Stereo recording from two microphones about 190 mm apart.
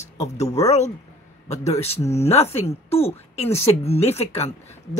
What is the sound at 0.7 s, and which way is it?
Speech, 35° left (ahead or behind).